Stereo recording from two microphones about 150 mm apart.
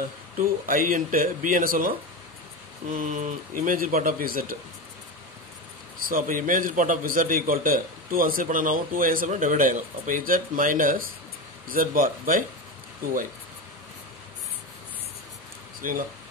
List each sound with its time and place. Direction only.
0.4 s a man's voice: 65° right (ahead or behind)
6.0 s a man's voice: 65° right (ahead or behind)
15.8 s speech: 65° right (ahead or behind)